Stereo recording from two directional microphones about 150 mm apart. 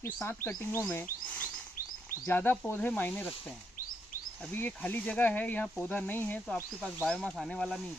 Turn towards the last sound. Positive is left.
turn(degrees=5)  # may be behind; listen again after turning